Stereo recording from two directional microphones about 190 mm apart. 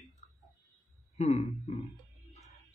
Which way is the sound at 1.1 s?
35° left (ahead or behind).